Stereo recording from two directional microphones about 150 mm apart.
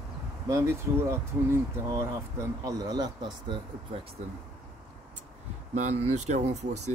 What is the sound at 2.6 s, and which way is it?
Speech, 25° right (ahead or behind).